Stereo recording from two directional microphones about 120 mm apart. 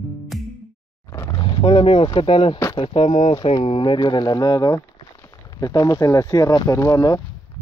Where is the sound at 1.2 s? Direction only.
30° left (ahead or behind).